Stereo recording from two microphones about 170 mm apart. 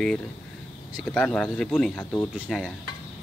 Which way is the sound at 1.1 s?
10° left (ahead or behind).